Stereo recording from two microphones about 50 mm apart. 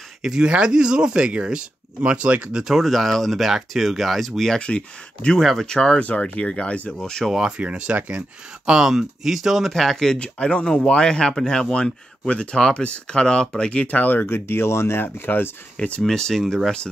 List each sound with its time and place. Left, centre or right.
0.2 s speech: centre
2.5 s speech: centre
4.6 s speech: left
5.4 s speech: centre
5.7 s speech: centre
7.3 s speech: centre
7.6 s speech: right
8.6 s speech: centre
10.1 s speech: left
14.2 s speech: left
16.0 s speech: centre